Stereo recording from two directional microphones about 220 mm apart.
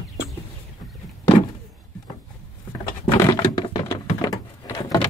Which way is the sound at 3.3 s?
20° left (ahead or behind).